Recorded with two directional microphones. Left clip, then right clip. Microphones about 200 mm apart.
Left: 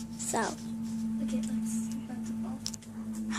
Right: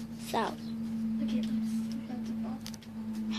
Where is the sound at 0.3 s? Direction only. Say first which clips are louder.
Even; 5° left (ahead or behind).